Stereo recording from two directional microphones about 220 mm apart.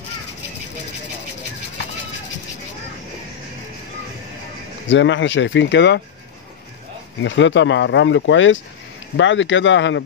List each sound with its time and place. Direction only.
4.8 s speech: 55° left (ahead or behind)
7.2 s speech: 55° left (ahead or behind)